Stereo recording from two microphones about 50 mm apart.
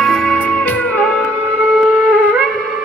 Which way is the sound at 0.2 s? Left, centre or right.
Left.